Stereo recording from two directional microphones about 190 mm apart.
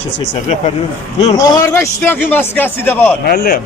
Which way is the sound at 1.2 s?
20° left (ahead or behind).